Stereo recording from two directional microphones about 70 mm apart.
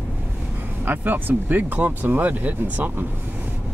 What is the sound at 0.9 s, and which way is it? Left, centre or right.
Speech, right.